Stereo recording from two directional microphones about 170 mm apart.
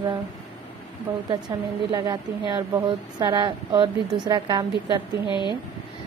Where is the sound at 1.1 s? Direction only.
10° right (ahead or behind).